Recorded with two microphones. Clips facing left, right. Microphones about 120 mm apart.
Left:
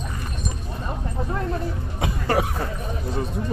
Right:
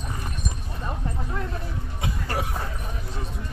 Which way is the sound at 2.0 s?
80° left.